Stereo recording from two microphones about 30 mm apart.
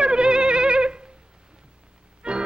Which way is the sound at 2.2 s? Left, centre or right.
Right.